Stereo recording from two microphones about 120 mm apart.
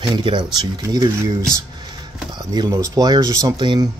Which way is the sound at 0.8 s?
30° right (ahead or behind).